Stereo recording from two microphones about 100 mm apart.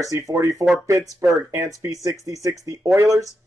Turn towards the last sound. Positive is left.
turn(degrees=-30)  # may be behind; listen again after turning